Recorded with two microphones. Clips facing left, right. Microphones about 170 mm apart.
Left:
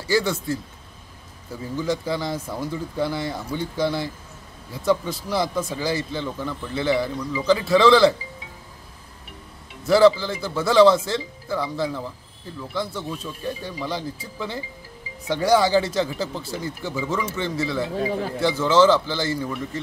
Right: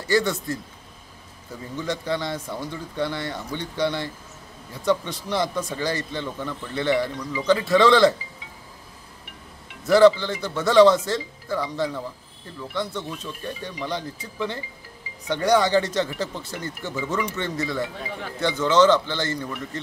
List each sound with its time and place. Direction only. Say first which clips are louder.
0.1 s speech: even; centre (ahead or behind)
9.8 s speech: even; 5° left (ahead or behind)
17.9 s speech: left 9 dB; 35° left (ahead or behind)
18.4 s speech: left 1 dB; 5° left (ahead or behind)